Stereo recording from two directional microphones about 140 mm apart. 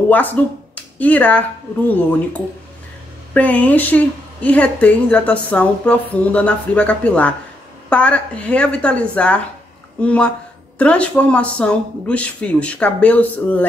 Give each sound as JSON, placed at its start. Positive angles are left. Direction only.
{"t": 0.1, "sound": "a woman's voice", "side_deg": 15}
{"t": 3.3, "sound": "a woman's voice", "side_deg": 10}